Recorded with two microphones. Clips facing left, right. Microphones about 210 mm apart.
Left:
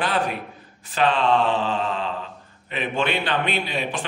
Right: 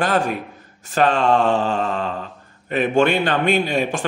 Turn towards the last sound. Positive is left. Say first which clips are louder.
# right 6 dB
turn(degrees=-45)  # may be behind; listen again after turning